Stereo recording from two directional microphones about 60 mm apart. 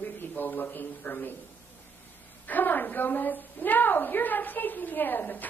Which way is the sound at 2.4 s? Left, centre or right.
Left.